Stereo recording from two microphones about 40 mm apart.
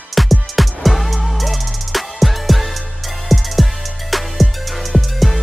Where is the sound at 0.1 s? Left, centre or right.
Centre.